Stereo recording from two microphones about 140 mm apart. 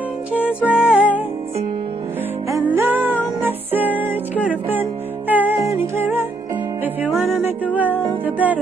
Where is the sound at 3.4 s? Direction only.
15° right (ahead or behind).